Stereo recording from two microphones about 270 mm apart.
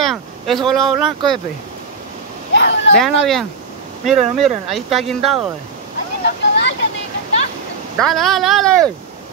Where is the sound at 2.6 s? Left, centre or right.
Left.